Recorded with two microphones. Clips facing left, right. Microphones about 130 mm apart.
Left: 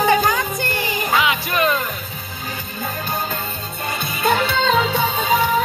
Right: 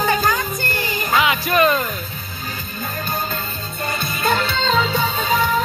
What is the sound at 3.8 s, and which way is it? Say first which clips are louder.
Music: left 1 dB; 10° left (ahead or behind).